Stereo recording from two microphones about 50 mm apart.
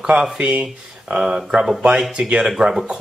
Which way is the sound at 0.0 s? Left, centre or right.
Centre.